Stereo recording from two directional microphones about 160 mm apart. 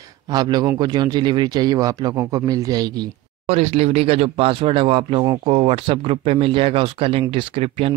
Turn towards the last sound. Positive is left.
turn(degrees=-35)  # may be behind; listen again after turning